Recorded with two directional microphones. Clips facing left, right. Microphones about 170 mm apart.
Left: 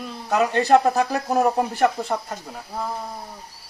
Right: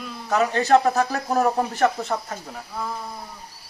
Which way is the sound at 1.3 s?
10° left (ahead or behind).